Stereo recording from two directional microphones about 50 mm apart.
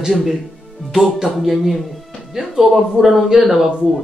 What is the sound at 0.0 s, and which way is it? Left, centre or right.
Speech, centre.